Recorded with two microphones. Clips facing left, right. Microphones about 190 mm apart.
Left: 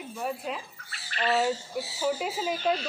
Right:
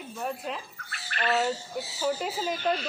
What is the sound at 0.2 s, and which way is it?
Speech, 5° left (ahead or behind).